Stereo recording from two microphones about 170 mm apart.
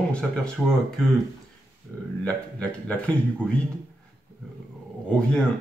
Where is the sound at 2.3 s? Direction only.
5° left (ahead or behind).